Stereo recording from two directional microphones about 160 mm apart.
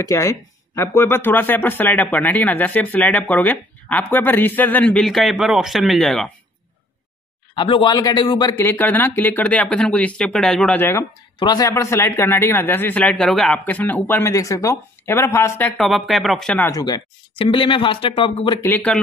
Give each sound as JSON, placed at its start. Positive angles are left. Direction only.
{"t": 0.0, "sound": "speech", "side_deg": 20}
{"t": 7.5, "sound": "a man's voice", "side_deg": 30}
{"t": 8.5, "sound": "speech", "side_deg": 10}
{"t": 11.3, "sound": "speech", "side_deg": 25}
{"t": 15.8, "sound": "speech", "side_deg": 0}
{"t": 16.7, "sound": "speech", "side_deg": 25}
{"t": 18.6, "sound": "speech", "side_deg": 10}